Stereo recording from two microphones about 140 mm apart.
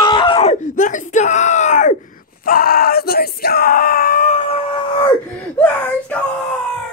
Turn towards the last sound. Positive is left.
turn(degrees=5)  # may be behind; listen again after turning